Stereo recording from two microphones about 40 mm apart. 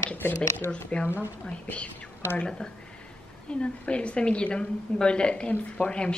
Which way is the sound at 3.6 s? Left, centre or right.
Left.